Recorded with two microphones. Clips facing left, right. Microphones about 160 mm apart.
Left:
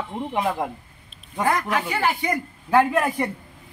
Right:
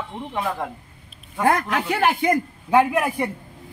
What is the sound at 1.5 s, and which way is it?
Speech, 60° right (ahead or behind).